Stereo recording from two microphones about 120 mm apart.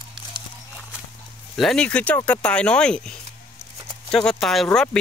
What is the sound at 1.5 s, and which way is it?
Speech, 5° left (ahead or behind).